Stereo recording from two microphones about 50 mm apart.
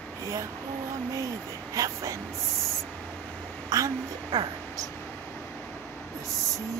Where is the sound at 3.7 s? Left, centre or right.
Right.